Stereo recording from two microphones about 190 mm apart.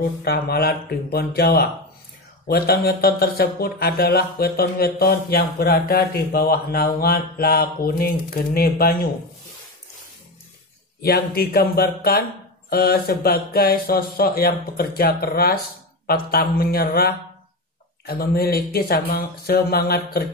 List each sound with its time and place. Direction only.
0.2 s speech: 55° left (ahead or behind)
11.0 s speech: 55° left (ahead or behind)